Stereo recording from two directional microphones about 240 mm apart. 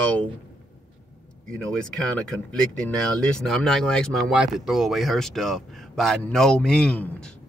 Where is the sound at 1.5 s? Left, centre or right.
Centre.